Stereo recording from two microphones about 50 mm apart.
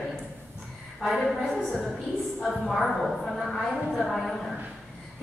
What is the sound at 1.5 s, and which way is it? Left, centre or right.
A woman's voice, centre.